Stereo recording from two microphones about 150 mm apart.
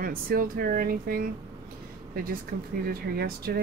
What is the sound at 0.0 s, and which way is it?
Speech, 80° right.